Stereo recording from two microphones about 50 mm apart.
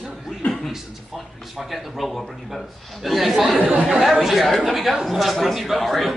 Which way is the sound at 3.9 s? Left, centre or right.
Centre.